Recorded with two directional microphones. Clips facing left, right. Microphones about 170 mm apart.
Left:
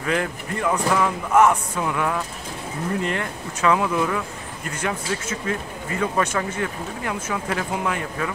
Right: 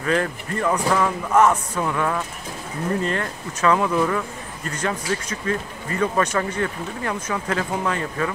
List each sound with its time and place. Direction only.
0.0 s speech: 10° left (ahead or behind)
3.0 s speech: 15° left (ahead or behind)